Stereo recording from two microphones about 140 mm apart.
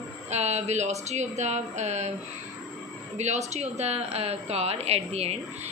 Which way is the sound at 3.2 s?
50° right (ahead or behind).